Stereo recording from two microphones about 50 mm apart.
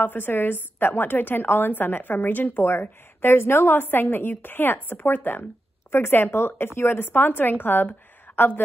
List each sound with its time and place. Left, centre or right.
0.0 s a woman's voice: left
2.6 s speech: left
3.8 s speech: left
5.9 s a woman's voice: left